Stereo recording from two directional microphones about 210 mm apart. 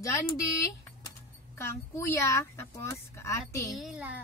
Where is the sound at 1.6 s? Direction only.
15° left (ahead or behind).